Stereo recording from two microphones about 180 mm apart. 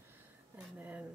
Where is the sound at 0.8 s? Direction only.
10° right (ahead or behind).